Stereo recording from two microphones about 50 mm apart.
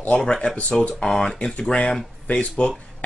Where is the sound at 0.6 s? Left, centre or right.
Left.